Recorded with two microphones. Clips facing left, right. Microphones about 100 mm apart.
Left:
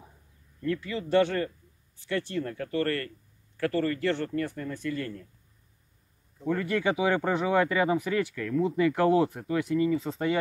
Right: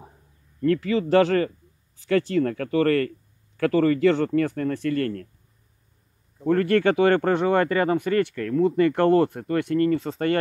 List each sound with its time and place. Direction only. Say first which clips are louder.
0.6 s speech: right 9 dB; 90° right; by 5.3 s 70° right (ahead or behind)
6.4 s speech: right 8 dB; 70° right (ahead or behind)
7.3 s speech: right 4 dB; centre (ahead or behind)